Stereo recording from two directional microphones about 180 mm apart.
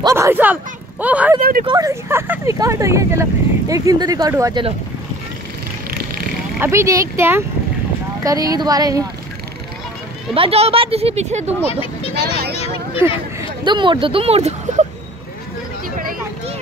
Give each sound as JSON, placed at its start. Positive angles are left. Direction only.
{"t": 0.0, "sound": "speech", "side_deg": -15}
{"t": 1.4, "sound": "speech", "side_deg": -50}
{"t": 1.7, "sound": "speech", "side_deg": -20}
{"t": 5.9, "sound": "vehicle", "side_deg": -55}
{"t": 6.6, "sound": "speech", "side_deg": -15}
{"t": 10.3, "sound": "speech", "side_deg": -30}
{"t": 11.6, "sound": "speech", "side_deg": 30}
{"t": 12.5, "sound": "a sound", "side_deg": 35}
{"t": 13.4, "sound": "speech", "side_deg": -25}